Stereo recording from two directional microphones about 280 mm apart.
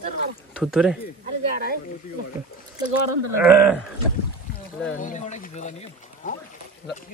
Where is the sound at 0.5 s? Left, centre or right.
Centre.